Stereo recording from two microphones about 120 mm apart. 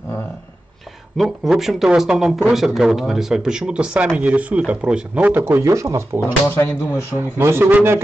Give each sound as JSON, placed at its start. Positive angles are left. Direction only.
{"t": 1.1, "sound": "a man's voice", "side_deg": 0}
{"t": 6.2, "sound": "speech", "side_deg": 15}
{"t": 7.2, "sound": "speech", "side_deg": -20}